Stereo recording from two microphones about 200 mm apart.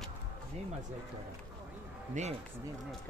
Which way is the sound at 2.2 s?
35° right (ahead or behind).